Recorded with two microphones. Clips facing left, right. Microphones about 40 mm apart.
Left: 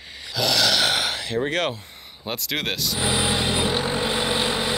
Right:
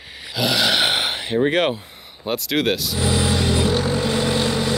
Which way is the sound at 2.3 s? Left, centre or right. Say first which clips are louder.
Right 6 dB; centre.